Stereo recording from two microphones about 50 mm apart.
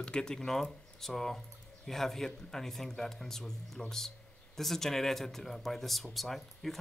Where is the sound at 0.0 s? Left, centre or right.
Centre.